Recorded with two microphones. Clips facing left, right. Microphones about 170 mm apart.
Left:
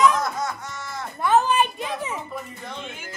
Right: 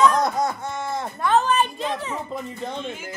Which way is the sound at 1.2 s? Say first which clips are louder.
Left 1 dB; 10° left (ahead or behind).